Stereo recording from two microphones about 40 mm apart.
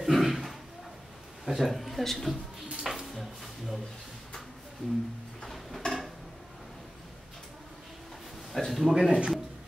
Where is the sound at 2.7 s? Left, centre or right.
Centre.